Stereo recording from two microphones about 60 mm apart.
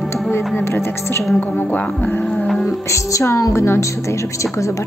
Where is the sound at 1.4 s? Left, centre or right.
Left.